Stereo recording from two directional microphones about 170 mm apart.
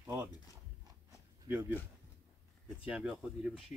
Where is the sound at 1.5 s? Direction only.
10° right (ahead or behind).